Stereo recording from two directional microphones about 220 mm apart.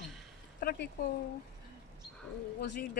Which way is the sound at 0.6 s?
45° left (ahead or behind).